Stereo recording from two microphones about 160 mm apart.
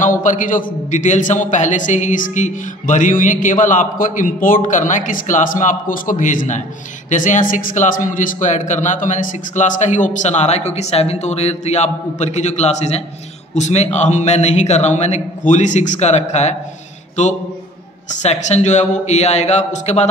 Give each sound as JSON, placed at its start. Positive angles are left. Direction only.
{"t": 0.0, "sound": "a man's voice", "side_deg": 55}
{"t": 18.2, "sound": "a man's voice", "side_deg": 45}